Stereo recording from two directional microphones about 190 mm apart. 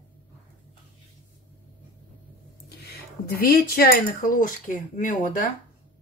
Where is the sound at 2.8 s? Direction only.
55° left (ahead or behind).